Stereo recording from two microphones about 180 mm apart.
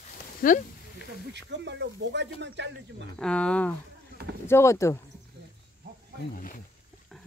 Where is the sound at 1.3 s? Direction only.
75° right (ahead or behind).